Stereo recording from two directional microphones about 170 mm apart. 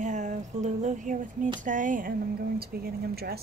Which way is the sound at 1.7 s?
50° right (ahead or behind).